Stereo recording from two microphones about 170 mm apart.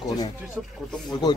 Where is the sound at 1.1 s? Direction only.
25° left (ahead or behind).